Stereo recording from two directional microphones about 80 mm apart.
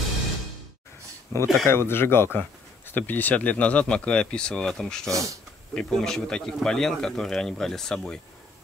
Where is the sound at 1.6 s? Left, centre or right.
Left; by 5.1 s centre.